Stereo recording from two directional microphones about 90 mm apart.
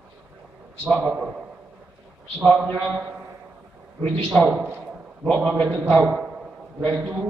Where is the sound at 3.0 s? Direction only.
15° right (ahead or behind).